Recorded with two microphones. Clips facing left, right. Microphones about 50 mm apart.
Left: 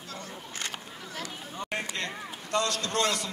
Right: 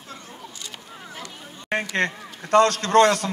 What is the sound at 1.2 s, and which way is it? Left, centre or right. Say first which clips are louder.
A man's voice: right 4 dB; right.